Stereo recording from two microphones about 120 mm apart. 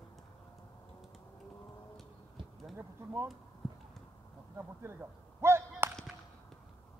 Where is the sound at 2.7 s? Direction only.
20° right (ahead or behind).